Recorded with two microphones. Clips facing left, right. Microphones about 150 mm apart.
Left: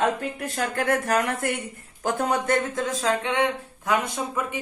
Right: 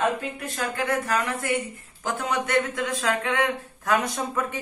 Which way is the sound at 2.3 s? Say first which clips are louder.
Right 2 dB; 40° left (ahead or behind).